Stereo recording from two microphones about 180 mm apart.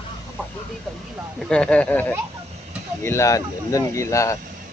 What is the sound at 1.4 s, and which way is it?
Speech, 5° left (ahead or behind).